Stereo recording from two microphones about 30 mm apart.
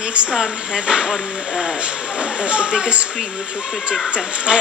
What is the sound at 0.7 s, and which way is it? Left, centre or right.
Speech, right.